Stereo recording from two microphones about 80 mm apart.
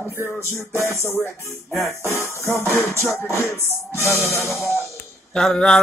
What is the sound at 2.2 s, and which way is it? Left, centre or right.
Music, right.